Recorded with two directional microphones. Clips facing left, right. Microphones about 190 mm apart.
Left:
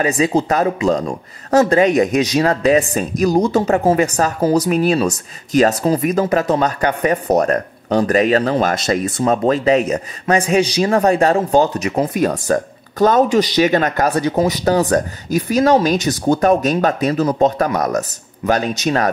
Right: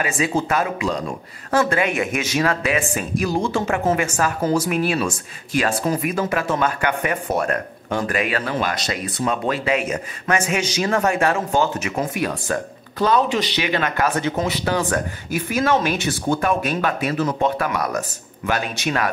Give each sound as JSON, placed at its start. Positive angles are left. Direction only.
{"t": 0.0, "sound": "speech", "side_deg": 35}